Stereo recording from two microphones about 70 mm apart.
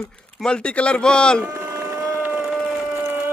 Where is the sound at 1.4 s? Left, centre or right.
Centre.